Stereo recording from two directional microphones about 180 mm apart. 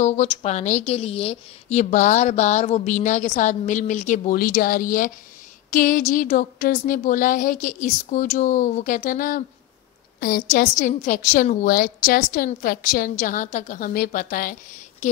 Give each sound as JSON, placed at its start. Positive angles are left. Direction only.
{"t": 0.0, "sound": "a woman's voice", "side_deg": 40}